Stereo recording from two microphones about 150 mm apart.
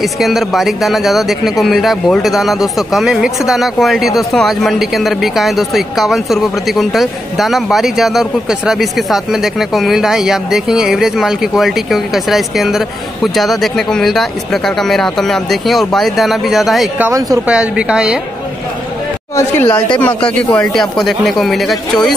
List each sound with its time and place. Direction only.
0.0 s speech: centre (ahead or behind)
17.0 s speech: 20° right (ahead or behind)
17.5 s a woman's voice: 5° right (ahead or behind)
19.3 s speech: 15° left (ahead or behind)